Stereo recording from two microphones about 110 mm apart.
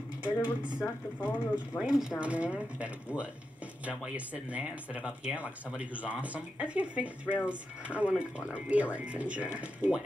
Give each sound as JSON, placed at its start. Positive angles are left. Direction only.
{"t": 0.2, "sound": "speech", "side_deg": -10}
{"t": 0.7, "sound": "speech", "side_deg": 20}
{"t": 1.8, "sound": "speech", "side_deg": -5}